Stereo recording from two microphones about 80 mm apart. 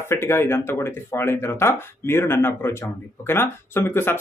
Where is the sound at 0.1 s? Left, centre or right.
Left.